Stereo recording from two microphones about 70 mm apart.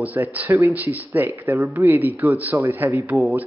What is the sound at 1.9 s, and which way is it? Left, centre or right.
Speech, right.